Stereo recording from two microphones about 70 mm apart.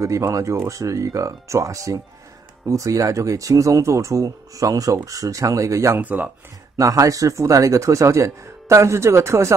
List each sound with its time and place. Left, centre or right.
0.0 s speech: right
5.9 s speech: right
6.8 s speech: right